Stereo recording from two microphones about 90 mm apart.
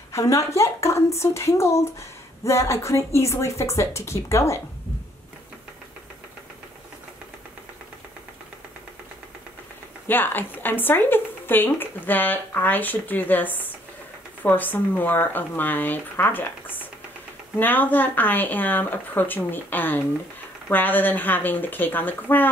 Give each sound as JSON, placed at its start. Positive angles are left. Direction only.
{"t": 0.1, "sound": "speech", "side_deg": 35}
{"t": 10.0, "sound": "a woman's voice", "side_deg": 20}